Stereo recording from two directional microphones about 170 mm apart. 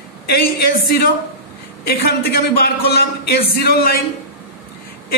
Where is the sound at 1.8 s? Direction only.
60° left (ahead or behind).